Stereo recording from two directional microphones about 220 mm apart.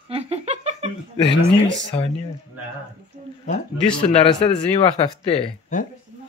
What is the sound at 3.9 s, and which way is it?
Speech, 25° left (ahead or behind).